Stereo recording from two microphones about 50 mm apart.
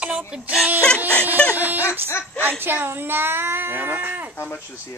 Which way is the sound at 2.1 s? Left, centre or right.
Left.